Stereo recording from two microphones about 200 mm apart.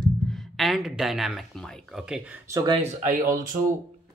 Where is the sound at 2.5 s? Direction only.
20° right (ahead or behind).